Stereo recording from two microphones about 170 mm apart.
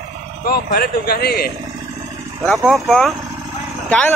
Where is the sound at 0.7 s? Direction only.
65° left (ahead or behind).